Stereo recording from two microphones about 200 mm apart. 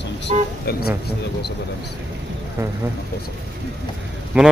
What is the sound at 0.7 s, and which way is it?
Speech, 50° left (ahead or behind).